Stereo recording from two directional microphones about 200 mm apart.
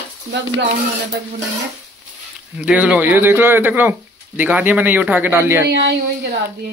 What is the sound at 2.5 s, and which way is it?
Speech, 5° right (ahead or behind).